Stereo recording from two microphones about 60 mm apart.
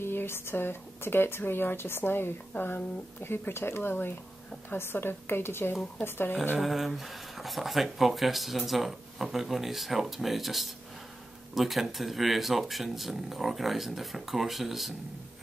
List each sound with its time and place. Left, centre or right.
0.0 s speech: left
6.6 s speech: centre